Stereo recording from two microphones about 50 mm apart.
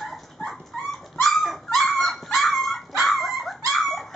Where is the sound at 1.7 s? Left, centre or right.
Centre.